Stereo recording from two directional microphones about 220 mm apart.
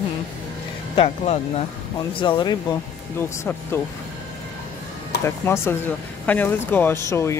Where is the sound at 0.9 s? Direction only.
25° left (ahead or behind).